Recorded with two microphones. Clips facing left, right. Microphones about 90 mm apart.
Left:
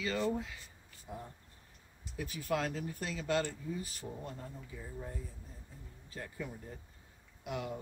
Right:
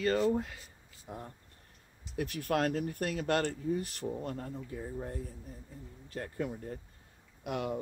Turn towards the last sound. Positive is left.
turn(degrees=-60)  # may be behind; listen again after turning